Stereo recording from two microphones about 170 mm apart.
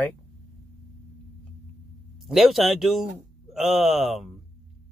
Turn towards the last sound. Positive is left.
turn(degrees=0)  # may be behind; listen again after turning